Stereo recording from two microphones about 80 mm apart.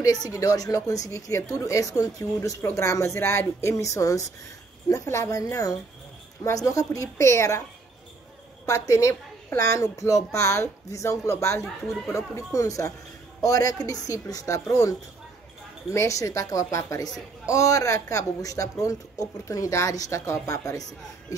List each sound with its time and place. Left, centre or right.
0.0 s a woman's voice: left
8.6 s a woman's voice: left